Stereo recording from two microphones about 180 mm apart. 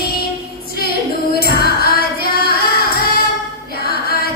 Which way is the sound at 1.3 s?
60° left (ahead or behind).